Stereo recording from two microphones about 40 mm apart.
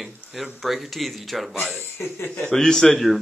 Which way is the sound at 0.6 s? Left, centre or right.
Centre.